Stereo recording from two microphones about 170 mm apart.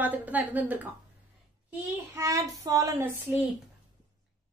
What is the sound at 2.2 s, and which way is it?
A woman's voice, 20° right (ahead or behind).